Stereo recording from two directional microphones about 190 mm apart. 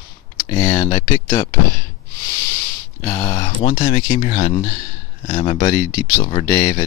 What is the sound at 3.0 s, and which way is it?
Speech, 15° left (ahead or behind).